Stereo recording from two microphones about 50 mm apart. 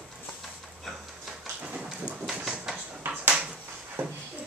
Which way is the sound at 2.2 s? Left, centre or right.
Centre.